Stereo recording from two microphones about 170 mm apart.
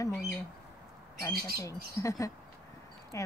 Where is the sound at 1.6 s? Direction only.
20° left (ahead or behind).